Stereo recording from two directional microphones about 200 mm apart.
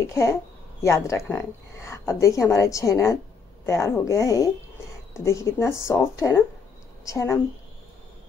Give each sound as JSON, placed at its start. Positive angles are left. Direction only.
{"t": 0.0, "sound": "a woman's voice", "side_deg": 15}